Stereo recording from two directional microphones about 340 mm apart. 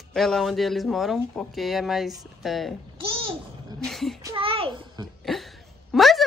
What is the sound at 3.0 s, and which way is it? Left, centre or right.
Babbling, centre.